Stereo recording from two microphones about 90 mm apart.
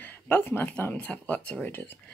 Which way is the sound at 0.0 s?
20° left (ahead or behind).